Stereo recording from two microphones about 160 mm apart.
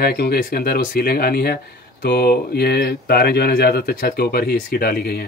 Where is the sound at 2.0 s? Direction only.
90° left.